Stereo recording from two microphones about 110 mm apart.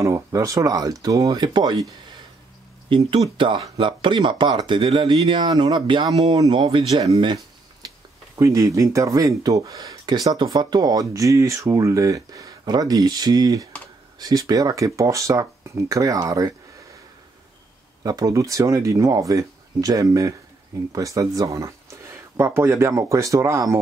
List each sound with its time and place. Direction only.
0.0 s speech: 30° right (ahead or behind)
2.9 s speech: 45° right (ahead or behind)
6.5 s speech: 50° right (ahead or behind)
6.9 s speech: 35° right (ahead or behind)
7.8 s a sound: 35° right (ahead or behind)
8.4 s speech: 30° right (ahead or behind)
18.0 s speech: 35° right (ahead or behind)